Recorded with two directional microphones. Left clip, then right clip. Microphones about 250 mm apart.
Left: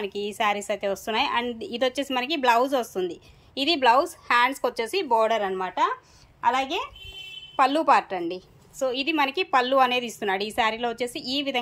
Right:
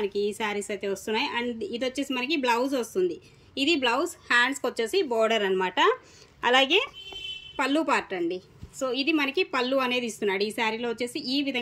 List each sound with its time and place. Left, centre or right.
0.0 s a woman's voice: centre